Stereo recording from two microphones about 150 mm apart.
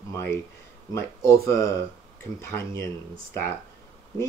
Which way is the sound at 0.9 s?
20° left (ahead or behind).